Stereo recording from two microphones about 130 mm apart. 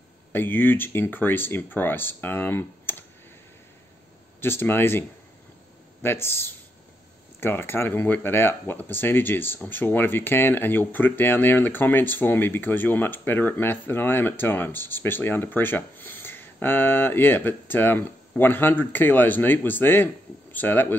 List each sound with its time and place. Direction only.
0.3 s speech: 15° left (ahead or behind)
4.4 s speech: 15° left (ahead or behind)
6.0 s speech: 20° left (ahead or behind)